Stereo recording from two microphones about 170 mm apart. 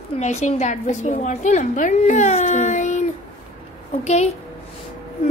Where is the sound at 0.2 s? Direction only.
40° left (ahead or behind).